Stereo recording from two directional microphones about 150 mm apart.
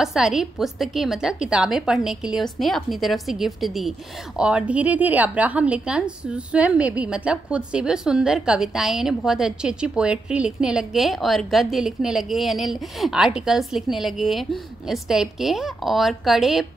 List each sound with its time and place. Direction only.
0.0 s a woman's voice: 5° right (ahead or behind)